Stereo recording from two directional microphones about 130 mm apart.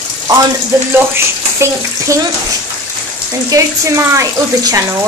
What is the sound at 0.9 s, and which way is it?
Speech, 20° right (ahead or behind).